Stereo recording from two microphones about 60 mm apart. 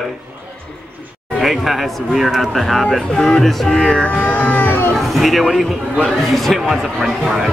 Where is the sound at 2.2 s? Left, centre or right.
Centre.